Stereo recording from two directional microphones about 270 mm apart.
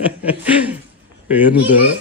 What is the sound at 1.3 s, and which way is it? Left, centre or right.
Speech, centre.